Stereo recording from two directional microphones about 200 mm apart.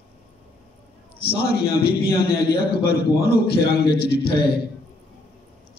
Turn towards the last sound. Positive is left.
turn(degrees=55)  # may be behind; listen again after turning